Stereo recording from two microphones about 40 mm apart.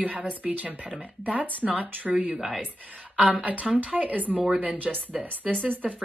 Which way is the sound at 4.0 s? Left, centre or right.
Right.